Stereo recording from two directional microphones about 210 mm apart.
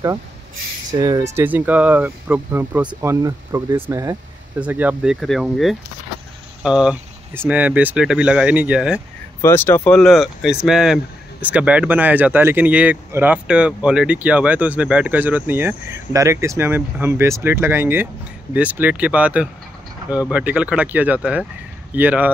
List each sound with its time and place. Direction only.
0.9 s speech: 15° right (ahead or behind)
9.4 s speech: 10° left (ahead or behind); by 22.3 s 10° right (ahead or behind)